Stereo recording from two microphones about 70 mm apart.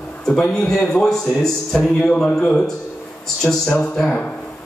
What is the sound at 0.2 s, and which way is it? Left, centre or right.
A man's voice, centre.